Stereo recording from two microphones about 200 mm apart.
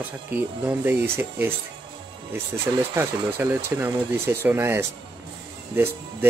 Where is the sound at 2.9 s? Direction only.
10° right (ahead or behind).